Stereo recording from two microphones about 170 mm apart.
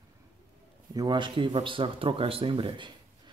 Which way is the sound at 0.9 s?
25° right (ahead or behind).